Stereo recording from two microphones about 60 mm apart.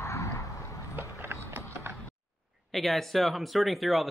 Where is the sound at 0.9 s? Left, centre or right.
Right.